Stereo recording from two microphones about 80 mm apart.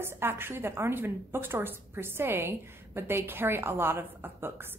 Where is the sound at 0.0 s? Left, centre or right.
Right.